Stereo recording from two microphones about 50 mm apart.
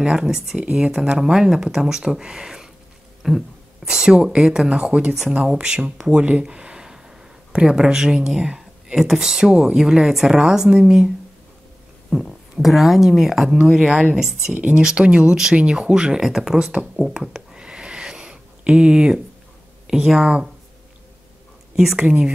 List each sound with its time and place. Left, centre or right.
0.0 s speech: centre
3.2 s a sound: centre
3.8 s speech: centre
6.2 s a sound: right
7.5 s speech: centre
12.1 s speech: centre
13.8 s speech: right
14.1 s speech: centre
14.5 s speech: right
17.1 s a sound: centre
19.9 s speech: centre
21.9 s speech: right